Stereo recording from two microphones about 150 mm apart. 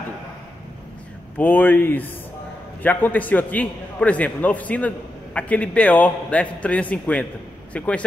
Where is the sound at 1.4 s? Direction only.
10° left (ahead or behind).